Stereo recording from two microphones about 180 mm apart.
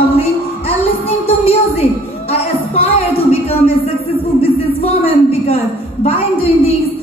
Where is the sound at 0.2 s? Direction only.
35° left (ahead or behind).